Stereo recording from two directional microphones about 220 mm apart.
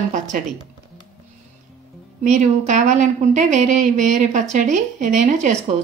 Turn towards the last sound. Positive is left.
turn(degrees=-30)  # may be behind; listen again after turning